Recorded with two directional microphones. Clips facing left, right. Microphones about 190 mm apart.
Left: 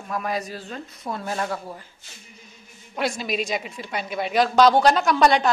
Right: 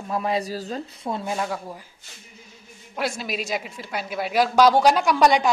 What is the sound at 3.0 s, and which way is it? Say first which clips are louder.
A woman's voice: left 2 dB; centre (ahead or behind).